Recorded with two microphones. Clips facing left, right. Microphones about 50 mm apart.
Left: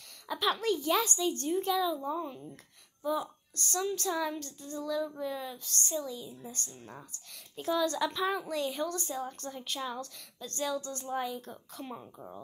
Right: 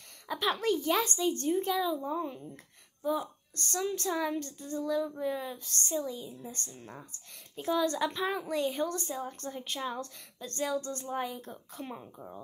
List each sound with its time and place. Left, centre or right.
0.3 s a woman's voice: right
2.0 s speech: centre
3.0 s a woman's voice: right
12.0 s speech: centre